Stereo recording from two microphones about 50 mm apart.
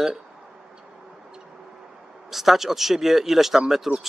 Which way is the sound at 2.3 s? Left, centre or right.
Centre.